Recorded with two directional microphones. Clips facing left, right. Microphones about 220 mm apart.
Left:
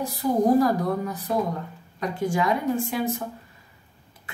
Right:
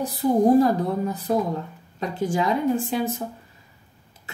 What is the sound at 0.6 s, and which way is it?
Speech, 25° right (ahead or behind).